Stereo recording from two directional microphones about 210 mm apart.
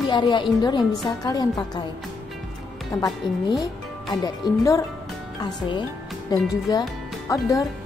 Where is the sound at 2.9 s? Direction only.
15° left (ahead or behind).